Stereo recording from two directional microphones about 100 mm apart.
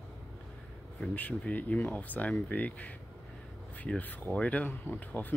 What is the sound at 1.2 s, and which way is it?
Speech, 15° left (ahead or behind).